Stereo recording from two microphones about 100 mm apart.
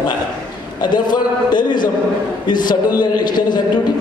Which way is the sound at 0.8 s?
50° left (ahead or behind).